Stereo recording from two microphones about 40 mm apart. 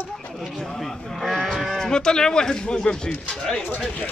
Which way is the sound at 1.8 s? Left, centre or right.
Centre.